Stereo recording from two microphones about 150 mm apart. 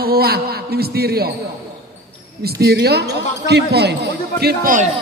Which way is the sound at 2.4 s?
90° right.